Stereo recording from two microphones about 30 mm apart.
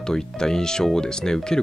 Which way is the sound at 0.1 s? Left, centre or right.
Left.